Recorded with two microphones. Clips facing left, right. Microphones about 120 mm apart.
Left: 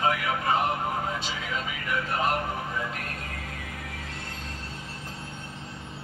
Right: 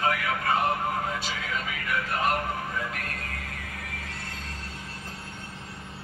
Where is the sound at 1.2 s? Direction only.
20° left (ahead or behind).